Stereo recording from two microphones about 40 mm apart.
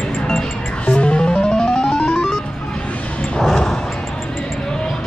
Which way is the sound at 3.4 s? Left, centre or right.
Centre.